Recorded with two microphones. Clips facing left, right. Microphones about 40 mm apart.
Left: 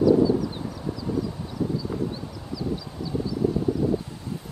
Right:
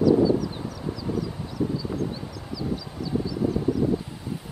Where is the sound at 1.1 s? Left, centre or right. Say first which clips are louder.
Left 1 dB; right.